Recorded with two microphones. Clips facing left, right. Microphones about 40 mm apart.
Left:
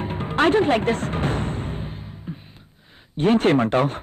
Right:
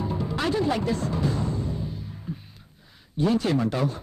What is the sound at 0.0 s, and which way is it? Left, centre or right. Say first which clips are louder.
Music: left 7 dB; left.